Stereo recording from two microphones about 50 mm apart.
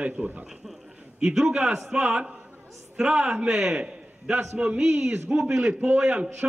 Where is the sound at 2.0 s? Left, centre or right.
Right.